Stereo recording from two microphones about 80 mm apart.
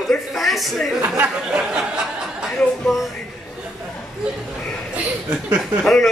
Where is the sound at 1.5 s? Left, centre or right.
Centre.